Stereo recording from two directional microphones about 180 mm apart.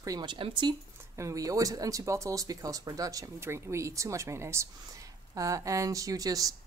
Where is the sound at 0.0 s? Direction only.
20° right (ahead or behind).